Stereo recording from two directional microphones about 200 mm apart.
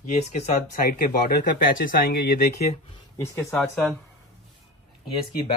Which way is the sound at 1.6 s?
45° left (ahead or behind).